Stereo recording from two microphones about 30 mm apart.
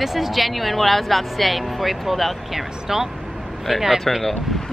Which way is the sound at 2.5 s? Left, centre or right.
Centre.